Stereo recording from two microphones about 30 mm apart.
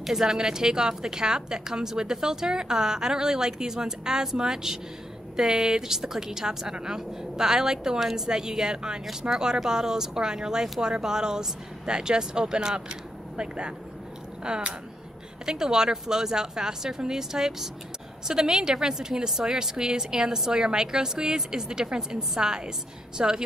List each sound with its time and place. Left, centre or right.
0.0 s a woman's voice: centre; by 14.8 s right
15.4 s a woman's voice: right